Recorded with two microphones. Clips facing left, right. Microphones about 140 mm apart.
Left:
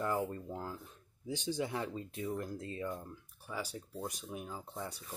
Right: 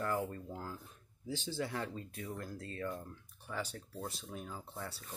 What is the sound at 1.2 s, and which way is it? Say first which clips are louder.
Speech: left 3 dB; 15° left (ahead or behind).